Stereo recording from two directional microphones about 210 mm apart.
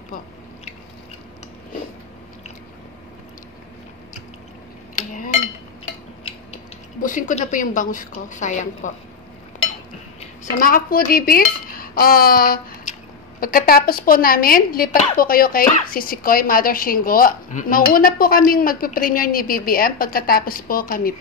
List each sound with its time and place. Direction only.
4.9 s a sound: 40° left (ahead or behind)
7.0 s a woman's voice: 40° left (ahead or behind)
10.6 s dishes: 40° left (ahead or behind)
13.4 s speech: 45° left (ahead or behind)